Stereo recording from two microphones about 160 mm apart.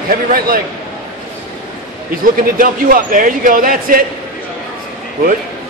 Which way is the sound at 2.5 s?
60° right (ahead or behind).